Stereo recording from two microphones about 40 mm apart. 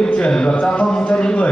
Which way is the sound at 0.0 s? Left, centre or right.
Centre.